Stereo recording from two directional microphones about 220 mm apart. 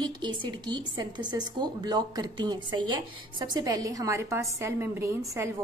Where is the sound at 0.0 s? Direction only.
20° right (ahead or behind).